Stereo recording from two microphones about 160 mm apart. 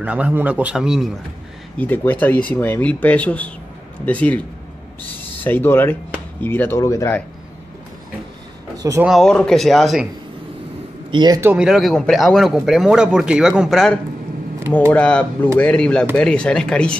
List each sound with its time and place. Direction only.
0.0 s a man's voice: 10° right (ahead or behind)
1.8 s speech: 10° left (ahead or behind)
5.4 s speech: 10° left (ahead or behind)
8.7 s a sound: 20° right (ahead or behind)
9.0 s speech: centre (ahead or behind)
11.1 s a man's voice: 25° right (ahead or behind)
11.5 s speech: 5° right (ahead or behind)